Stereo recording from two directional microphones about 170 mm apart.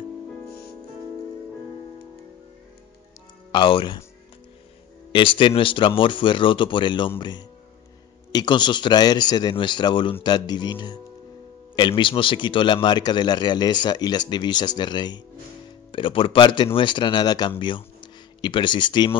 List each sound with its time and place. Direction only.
3.5 s speech: 30° left (ahead or behind)
5.1 s speech: 30° left (ahead or behind)